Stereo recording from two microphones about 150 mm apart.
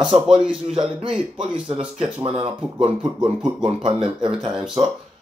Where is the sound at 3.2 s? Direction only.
10° right (ahead or behind).